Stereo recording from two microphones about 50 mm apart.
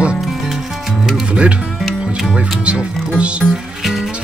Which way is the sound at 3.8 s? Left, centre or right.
Centre.